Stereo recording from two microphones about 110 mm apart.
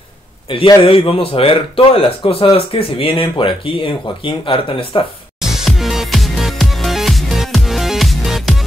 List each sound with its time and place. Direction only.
0.5 s speech: 50° left (ahead or behind)
5.4 s music: 5° right (ahead or behind)